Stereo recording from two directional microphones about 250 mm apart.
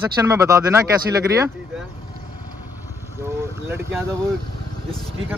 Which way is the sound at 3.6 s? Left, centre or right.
Centre.